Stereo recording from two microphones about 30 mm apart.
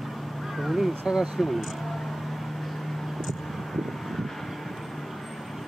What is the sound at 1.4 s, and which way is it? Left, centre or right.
Speech, centre.